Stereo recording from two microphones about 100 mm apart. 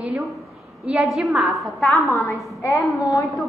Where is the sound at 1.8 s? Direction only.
20° left (ahead or behind).